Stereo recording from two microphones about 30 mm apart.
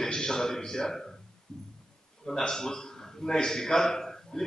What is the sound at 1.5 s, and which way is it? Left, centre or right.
Music, left.